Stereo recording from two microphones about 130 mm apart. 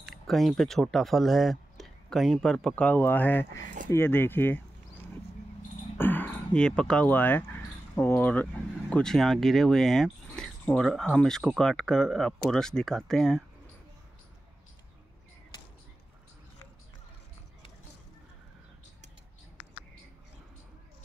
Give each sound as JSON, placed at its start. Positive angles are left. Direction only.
{"t": 0.0, "sound": "speech", "side_deg": 0}
{"t": 5.9, "sound": "speech", "side_deg": 15}